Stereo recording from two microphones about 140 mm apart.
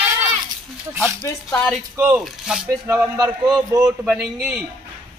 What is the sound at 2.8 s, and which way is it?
Speech, 15° right (ahead or behind).